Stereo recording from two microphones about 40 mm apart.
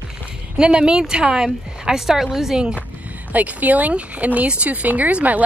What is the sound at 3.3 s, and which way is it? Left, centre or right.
A woman's voice, right.